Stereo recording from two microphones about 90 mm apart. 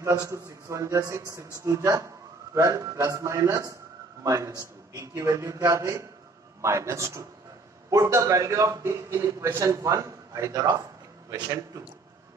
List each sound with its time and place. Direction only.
0.3 s a man's voice: 35° right (ahead or behind)